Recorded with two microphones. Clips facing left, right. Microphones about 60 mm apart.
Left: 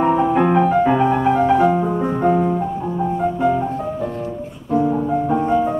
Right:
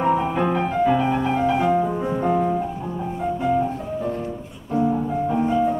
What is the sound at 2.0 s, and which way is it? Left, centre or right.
Music, left.